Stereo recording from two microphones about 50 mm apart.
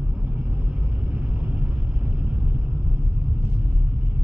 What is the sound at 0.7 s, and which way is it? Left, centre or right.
Vehicle, right.